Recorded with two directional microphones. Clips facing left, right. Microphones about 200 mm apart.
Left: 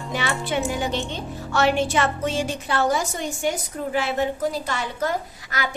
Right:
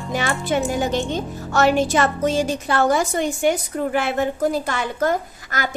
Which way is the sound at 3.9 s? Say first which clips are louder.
Even; 50° right (ahead or behind).